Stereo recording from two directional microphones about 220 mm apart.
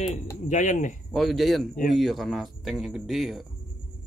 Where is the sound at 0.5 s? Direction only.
35° left (ahead or behind).